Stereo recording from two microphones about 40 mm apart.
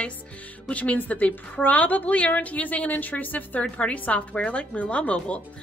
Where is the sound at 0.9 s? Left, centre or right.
Left.